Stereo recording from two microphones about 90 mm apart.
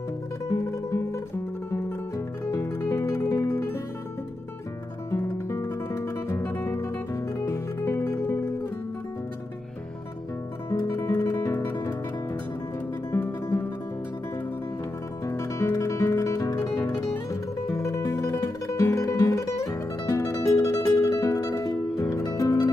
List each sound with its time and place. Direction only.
0.5 s music: 35° left (ahead or behind)
2.4 s music: 35° left (ahead or behind)
5.1 s music: 30° left (ahead or behind)
7.3 s music: 35° left (ahead or behind)
10.7 s guitar: 30° left (ahead or behind)
13.1 s music: 30° left (ahead or behind)
15.2 s music: 35° left (ahead or behind)